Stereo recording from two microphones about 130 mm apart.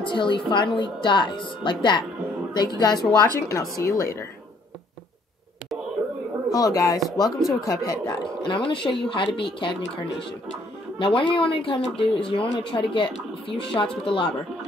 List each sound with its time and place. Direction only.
0.0 s speech: 40° left (ahead or behind)
6.5 s speech: 30° left (ahead or behind)
11.0 s speech: 45° left (ahead or behind)